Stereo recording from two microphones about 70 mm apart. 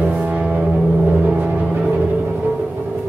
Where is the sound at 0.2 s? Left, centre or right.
Centre.